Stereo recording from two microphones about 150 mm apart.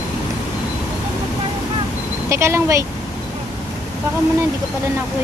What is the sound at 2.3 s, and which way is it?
Speech, 20° right (ahead or behind).